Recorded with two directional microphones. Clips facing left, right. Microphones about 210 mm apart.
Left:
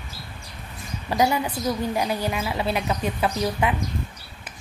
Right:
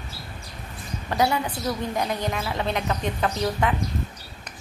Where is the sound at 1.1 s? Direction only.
10° left (ahead or behind).